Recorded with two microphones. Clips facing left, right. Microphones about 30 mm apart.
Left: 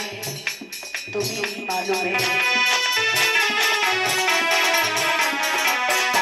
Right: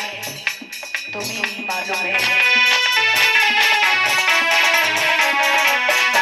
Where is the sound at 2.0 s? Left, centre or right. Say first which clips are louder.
Right 7 dB; right.